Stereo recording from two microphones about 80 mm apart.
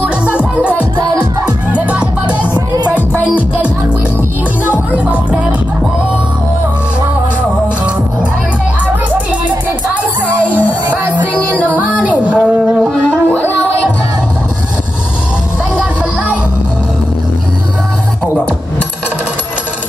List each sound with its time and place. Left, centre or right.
1.4 s music: centre
2.5 s music: right
4.6 s music: centre
7.6 s music: centre
10.2 s music: centre
10.9 s music: right